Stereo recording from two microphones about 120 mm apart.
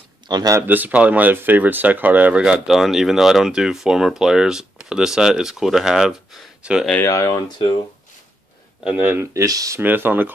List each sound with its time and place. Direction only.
0.3 s speech: 35° right (ahead or behind)
0.6 s speech: 15° right (ahead or behind)
7.1 s speech: 25° left (ahead or behind)
8.8 s speech: 15° right (ahead or behind)
9.8 s speech: 15° right (ahead or behind)